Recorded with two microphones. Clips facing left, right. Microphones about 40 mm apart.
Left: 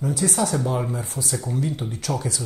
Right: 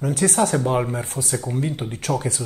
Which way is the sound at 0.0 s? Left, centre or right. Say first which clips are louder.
Right 3 dB; right.